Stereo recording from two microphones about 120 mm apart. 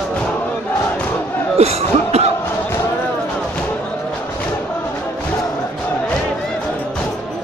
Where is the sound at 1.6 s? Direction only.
60° right (ahead or behind).